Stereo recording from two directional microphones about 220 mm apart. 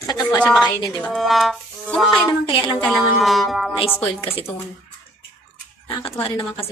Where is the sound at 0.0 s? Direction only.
20° left (ahead or behind).